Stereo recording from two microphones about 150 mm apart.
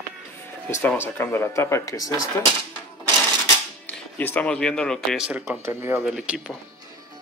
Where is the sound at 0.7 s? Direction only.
15° left (ahead or behind).